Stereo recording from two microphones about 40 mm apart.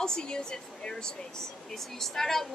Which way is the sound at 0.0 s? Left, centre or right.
Centre.